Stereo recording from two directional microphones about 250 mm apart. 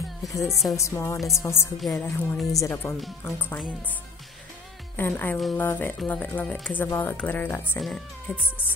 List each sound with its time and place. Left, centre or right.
0.5 s a woman's voice: centre
0.7 s a woman's voice: centre
2.5 s speech: centre
4.9 s speech: centre